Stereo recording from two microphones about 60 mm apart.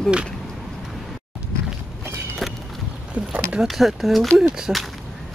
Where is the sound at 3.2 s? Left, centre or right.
Right.